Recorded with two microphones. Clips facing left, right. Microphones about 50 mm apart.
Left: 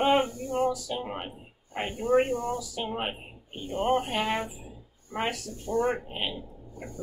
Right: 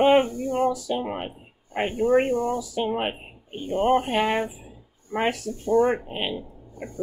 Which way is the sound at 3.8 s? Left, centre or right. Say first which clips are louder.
Right 5 dB; right.